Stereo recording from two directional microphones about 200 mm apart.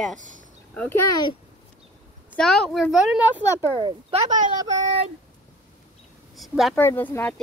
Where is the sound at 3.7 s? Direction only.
25° right (ahead or behind).